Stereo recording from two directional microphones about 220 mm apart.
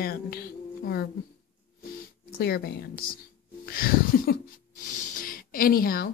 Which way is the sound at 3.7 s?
40° left (ahead or behind).